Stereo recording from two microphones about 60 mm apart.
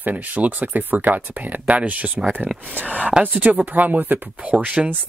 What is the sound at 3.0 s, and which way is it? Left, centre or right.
Speech, right.